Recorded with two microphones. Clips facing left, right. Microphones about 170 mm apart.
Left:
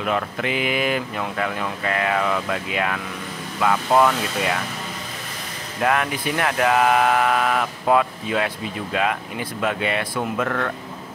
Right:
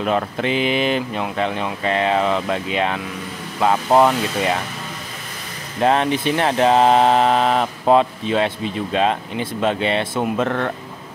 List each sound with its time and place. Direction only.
0.0 s speech: 30° right (ahead or behind)
5.8 s speech: 30° right (ahead or behind)